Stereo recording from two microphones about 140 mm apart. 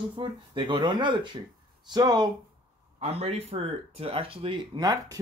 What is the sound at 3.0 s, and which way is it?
Speech, 45° right (ahead or behind).